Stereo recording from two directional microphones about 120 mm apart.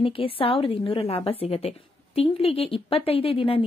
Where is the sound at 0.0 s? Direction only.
50° left (ahead or behind).